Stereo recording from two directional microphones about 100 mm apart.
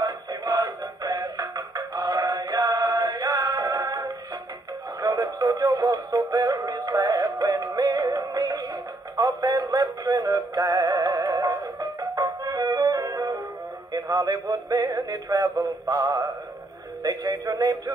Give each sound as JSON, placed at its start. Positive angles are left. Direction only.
{"t": 0.0, "sound": "synthetic singing", "side_deg": -40}
{"t": 13.9, "sound": "music", "side_deg": -40}